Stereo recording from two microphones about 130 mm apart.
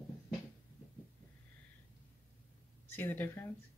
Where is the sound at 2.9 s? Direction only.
15° left (ahead or behind).